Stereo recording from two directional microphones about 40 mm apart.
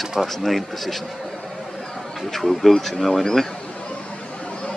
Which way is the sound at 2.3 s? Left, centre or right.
Centre.